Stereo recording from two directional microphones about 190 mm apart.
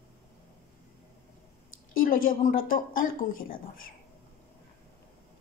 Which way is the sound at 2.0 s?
45° left (ahead or behind).